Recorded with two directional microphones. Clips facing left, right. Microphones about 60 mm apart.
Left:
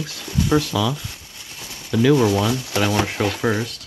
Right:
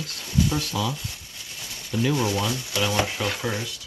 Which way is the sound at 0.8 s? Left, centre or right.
Left.